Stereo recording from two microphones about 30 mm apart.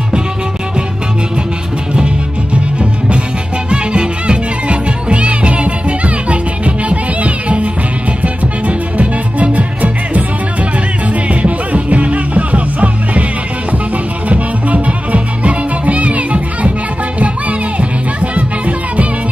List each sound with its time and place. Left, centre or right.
3.7 s music: right
11.2 s music: right
14.3 s music: right